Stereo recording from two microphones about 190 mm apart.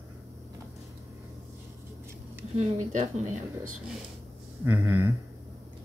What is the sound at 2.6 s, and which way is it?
Speech, 40° right (ahead or behind).